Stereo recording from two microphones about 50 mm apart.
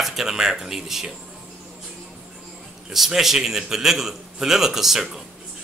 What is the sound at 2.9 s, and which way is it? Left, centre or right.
A man's voice, centre.